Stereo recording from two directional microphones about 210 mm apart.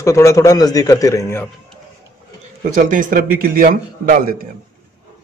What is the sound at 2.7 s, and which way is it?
A man's voice, 40° right (ahead or behind).